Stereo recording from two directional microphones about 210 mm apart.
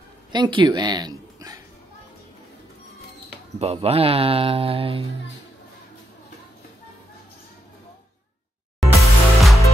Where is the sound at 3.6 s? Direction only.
30° right (ahead or behind).